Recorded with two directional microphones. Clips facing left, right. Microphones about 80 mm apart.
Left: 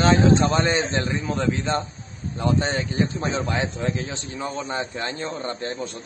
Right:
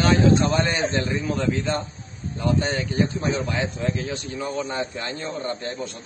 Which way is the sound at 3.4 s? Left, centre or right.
Left.